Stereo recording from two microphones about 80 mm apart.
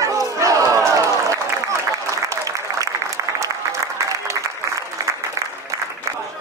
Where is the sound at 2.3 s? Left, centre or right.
Right.